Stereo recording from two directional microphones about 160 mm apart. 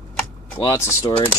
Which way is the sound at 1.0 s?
30° left (ahead or behind).